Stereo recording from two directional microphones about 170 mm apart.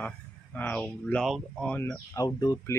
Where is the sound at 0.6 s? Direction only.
10° left (ahead or behind).